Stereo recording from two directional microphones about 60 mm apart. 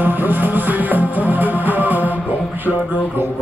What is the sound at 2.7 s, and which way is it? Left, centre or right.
Music, centre.